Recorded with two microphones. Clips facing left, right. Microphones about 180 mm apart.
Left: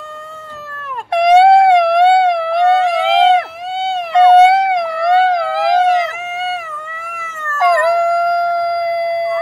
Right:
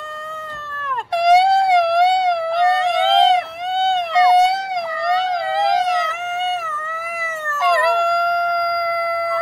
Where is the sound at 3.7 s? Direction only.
Centre (ahead or behind).